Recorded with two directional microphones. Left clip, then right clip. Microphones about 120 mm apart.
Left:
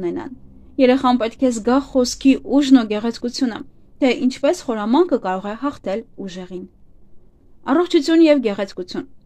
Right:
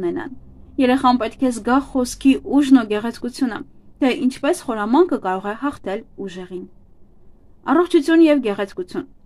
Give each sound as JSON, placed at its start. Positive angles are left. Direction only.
{"t": 0.0, "sound": "a woman's voice", "side_deg": 20}
{"t": 7.6, "sound": "a woman's voice", "side_deg": 20}